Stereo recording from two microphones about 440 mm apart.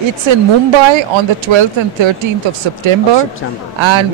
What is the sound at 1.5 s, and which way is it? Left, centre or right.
Speech, right.